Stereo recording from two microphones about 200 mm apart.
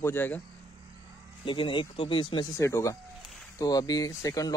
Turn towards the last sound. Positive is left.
turn(degrees=15)  # may be behind; listen again after turning